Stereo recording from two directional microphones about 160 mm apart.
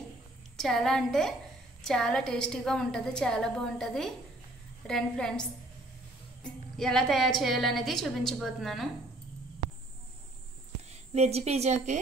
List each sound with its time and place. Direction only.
0.6 s a woman's voice: centre (ahead or behind)
6.8 s a woman's voice: centre (ahead or behind)
10.9 s speech: 40° right (ahead or behind)